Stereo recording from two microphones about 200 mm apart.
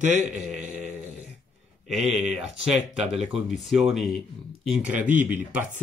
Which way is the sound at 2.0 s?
35° right (ahead or behind).